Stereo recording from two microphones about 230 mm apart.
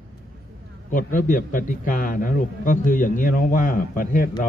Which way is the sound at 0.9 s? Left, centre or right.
Left.